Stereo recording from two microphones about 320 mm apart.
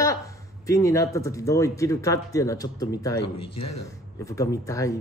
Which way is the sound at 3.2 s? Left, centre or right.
Left.